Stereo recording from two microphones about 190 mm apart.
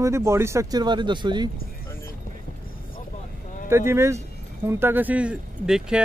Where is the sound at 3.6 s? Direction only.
15° right (ahead or behind).